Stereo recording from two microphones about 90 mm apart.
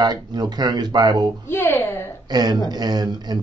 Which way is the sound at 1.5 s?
25° left (ahead or behind).